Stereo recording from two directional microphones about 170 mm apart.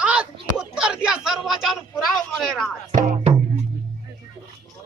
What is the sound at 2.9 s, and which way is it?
Music, 50° right (ahead or behind).